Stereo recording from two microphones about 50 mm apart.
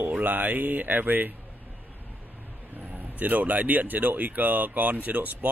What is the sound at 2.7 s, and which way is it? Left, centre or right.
Speech, right.